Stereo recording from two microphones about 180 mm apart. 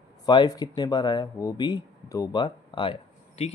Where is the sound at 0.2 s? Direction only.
20° left (ahead or behind).